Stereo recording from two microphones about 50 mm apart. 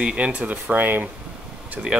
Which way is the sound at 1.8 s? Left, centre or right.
Centre.